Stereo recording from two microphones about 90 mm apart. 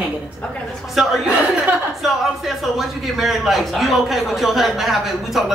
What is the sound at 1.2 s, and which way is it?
Speech, 20° right (ahead or behind).